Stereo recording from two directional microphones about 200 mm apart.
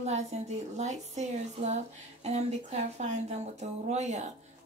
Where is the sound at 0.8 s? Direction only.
35° right (ahead or behind).